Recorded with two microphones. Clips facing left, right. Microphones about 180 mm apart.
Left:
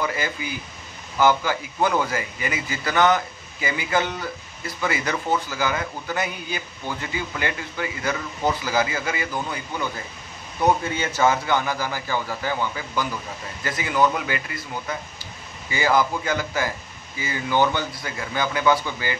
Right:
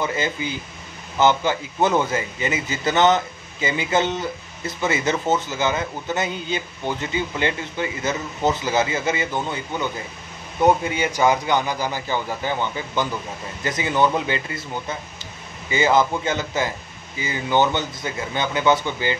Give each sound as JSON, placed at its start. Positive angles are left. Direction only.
{"t": 0.0, "sound": "a man's voice", "side_deg": -25}